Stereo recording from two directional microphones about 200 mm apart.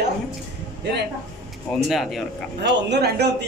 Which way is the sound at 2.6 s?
55° right (ahead or behind).